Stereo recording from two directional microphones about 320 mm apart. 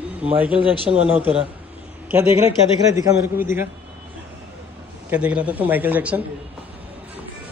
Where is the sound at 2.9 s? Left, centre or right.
Centre.